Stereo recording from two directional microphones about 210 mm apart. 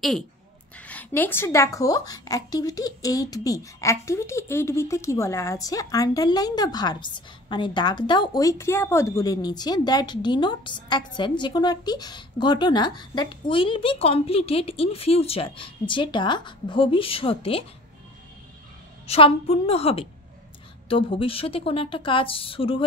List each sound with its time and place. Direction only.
0.7 s a woman's voice: 5° left (ahead or behind); by 17.6 s 25° left (ahead or behind)
19.0 s a woman's voice: 30° left (ahead or behind)